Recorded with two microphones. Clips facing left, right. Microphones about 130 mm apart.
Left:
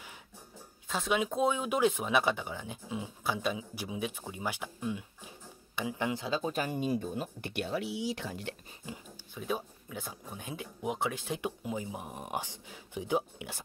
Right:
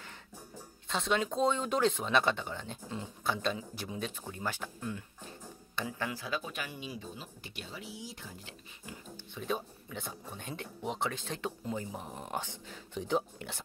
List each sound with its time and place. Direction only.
0.8 s speech: 5° left (ahead or behind); by 8.5 s 80° left
9.3 s speech: 5° left (ahead or behind)